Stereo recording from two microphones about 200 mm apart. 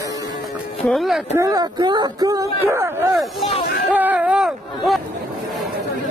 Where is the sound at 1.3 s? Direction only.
15° right (ahead or behind).